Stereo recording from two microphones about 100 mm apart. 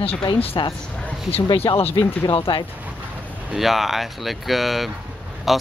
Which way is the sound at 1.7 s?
45° left (ahead or behind).